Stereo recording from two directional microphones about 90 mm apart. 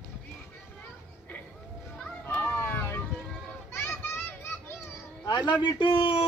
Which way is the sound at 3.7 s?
25° left (ahead or behind).